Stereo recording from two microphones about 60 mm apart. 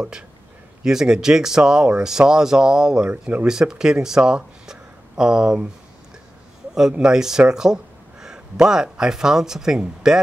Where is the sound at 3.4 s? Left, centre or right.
Centre.